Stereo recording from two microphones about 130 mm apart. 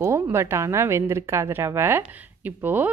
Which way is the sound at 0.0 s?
20° right (ahead or behind).